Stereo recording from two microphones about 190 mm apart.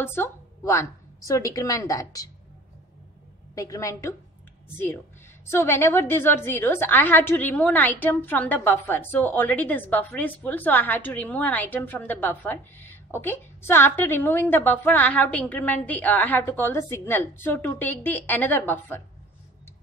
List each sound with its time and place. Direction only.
0.0 s a woman's voice: 10° left (ahead or behind)
3.5 s a woman's voice: 15° left (ahead or behind)
5.5 s a woman's voice: 15° left (ahead or behind)